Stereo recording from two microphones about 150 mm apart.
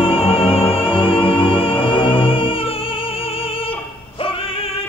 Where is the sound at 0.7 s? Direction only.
35° left (ahead or behind).